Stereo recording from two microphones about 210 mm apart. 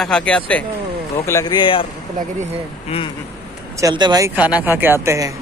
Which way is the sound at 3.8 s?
20° right (ahead or behind).